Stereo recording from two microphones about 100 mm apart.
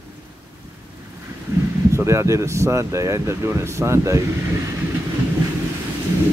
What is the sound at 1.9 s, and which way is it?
Speech, 30° right (ahead or behind).